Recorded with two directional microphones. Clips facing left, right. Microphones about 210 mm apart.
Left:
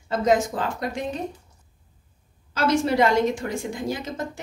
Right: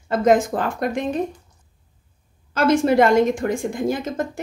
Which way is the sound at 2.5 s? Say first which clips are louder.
Right 5 dB; 50° right (ahead or behind).